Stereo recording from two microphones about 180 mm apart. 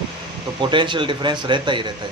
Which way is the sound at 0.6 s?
25° right (ahead or behind).